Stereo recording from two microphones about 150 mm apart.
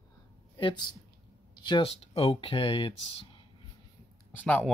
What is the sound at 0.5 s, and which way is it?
Speech, 30° left (ahead or behind).